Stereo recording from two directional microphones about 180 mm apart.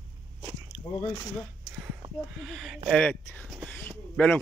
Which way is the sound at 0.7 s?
Centre (ahead or behind).